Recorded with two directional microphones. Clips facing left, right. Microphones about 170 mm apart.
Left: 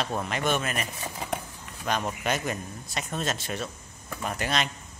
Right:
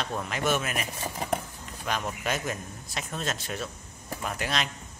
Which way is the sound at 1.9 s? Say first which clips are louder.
Left 2 dB; centre (ahead or behind).